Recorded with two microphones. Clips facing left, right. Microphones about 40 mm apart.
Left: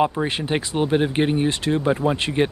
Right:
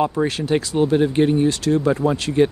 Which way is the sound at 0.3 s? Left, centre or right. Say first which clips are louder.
Right 3 dB; left.